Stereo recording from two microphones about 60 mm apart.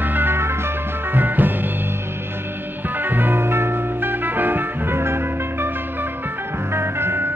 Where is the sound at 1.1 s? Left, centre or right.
Right.